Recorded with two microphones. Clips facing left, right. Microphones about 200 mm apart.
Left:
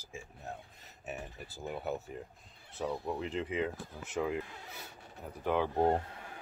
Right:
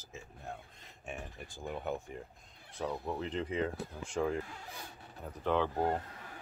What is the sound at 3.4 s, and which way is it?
Speech, 35° right (ahead or behind).